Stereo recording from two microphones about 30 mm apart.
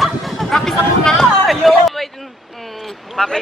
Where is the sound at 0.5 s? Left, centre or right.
Centre.